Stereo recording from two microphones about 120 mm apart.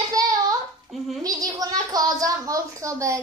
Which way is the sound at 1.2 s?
30° right (ahead or behind).